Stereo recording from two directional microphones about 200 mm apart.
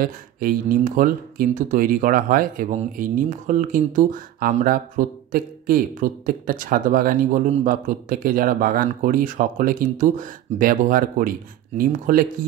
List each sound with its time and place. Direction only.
0.0 s speech: 45° right (ahead or behind)